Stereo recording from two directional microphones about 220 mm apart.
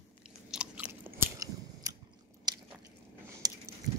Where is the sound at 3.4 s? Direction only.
15° right (ahead or behind).